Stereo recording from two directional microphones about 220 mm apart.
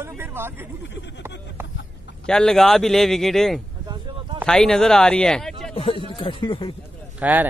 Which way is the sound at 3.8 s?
20° right (ahead or behind).